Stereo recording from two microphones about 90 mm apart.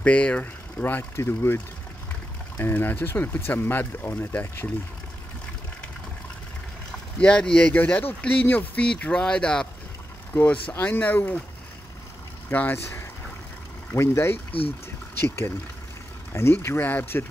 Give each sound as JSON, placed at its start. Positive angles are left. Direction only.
{"t": 0.0, "sound": "speech", "side_deg": 15}
{"t": 1.1, "sound": "speech", "side_deg": 30}
{"t": 7.2, "sound": "speech", "side_deg": 10}
{"t": 12.4, "sound": "speech", "side_deg": 20}
{"t": 13.9, "sound": "speech", "side_deg": 30}
{"t": 16.6, "sound": "speech", "side_deg": 25}